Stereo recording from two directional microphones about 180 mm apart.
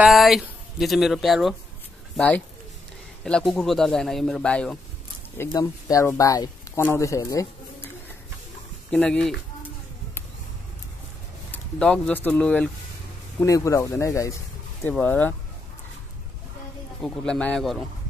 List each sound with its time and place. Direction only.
0.0 s speech: centre (ahead or behind)
5.4 s speech: 20° left (ahead or behind)
8.9 s speech: 5° left (ahead or behind)
11.5 s speech: 10° left (ahead or behind)
17.0 s speech: 5° left (ahead or behind)